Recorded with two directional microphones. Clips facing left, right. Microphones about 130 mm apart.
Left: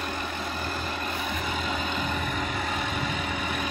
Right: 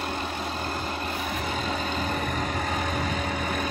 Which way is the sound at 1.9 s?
40° right (ahead or behind).